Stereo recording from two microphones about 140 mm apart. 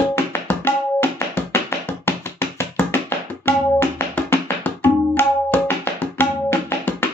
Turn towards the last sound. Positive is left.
turn(degrees=15)  # may be behind; listen again after turning